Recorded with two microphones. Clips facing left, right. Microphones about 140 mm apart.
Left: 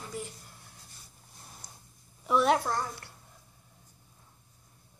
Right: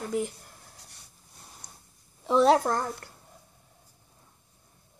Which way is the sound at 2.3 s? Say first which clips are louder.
Right 4 dB; 30° right (ahead or behind).